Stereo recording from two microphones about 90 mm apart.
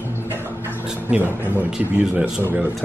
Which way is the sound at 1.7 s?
10° right (ahead or behind).